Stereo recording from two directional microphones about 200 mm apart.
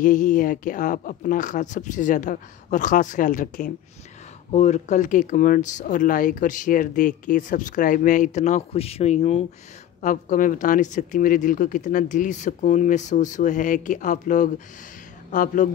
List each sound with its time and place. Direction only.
0.0 s speech: 40° left (ahead or behind)